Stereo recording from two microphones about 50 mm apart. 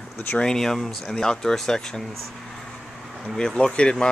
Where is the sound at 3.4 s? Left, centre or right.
Centre.